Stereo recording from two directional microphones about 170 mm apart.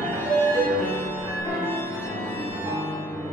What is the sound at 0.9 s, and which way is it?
Music, 10° left (ahead or behind).